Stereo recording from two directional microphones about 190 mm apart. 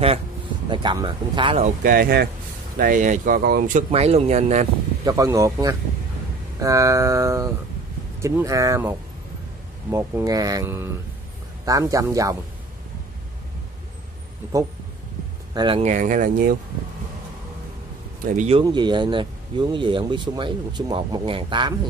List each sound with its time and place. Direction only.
0.7 s speech: 25° right (ahead or behind)
1.8 s speech: 50° right (ahead or behind)
3.9 s speech: 30° right (ahead or behind)
5.0 s speech: 15° right (ahead or behind)
15.5 s speech: 25° right (ahead or behind)
15.8 s speech: 40° right (ahead or behind)
18.2 s speech: 40° right (ahead or behind)
18.6 s speech: 25° right (ahead or behind)